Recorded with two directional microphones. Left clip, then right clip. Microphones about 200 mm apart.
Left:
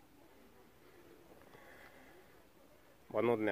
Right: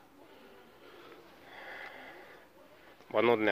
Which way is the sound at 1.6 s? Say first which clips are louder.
Right 16 dB; 15° right (ahead or behind).